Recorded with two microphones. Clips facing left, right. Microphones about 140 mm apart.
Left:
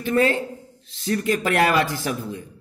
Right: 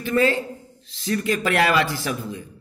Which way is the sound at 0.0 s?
50° left (ahead or behind).